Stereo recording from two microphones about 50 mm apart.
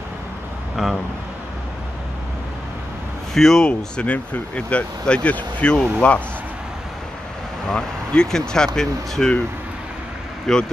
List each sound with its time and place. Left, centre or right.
0.8 s speech: centre
3.3 s speech: centre; by 6.2 s left
7.7 s speech: centre
10.5 s speech: centre